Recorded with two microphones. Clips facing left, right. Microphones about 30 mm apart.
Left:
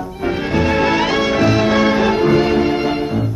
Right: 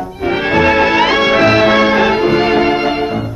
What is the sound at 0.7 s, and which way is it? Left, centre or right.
Music, right.